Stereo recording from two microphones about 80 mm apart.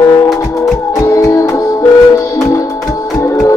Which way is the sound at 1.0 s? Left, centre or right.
Left.